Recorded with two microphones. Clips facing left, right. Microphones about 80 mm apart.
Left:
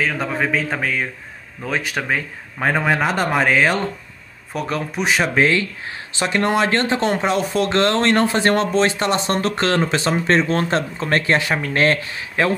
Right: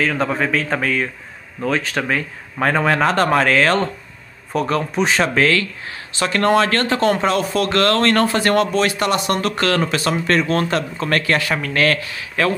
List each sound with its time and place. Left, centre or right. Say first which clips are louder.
0.0 s speech: right 2 dB; centre; by 12.5 s left